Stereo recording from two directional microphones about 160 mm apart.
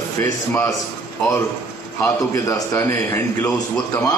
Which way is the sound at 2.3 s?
20° left (ahead or behind).